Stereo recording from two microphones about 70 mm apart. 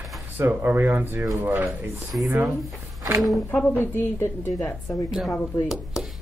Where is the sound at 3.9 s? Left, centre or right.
Left.